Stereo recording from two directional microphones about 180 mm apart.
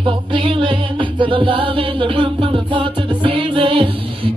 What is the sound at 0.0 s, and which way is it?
Music, 30° right (ahead or behind).